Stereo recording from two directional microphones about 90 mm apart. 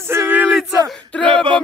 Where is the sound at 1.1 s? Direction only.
10° left (ahead or behind).